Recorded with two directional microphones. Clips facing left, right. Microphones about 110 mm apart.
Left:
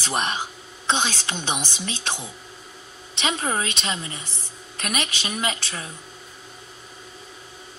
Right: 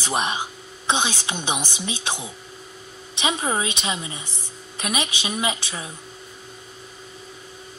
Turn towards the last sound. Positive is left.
turn(degrees=-15)  # may be behind; listen again after turning